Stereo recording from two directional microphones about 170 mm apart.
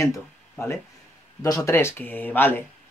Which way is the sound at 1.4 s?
15° left (ahead or behind).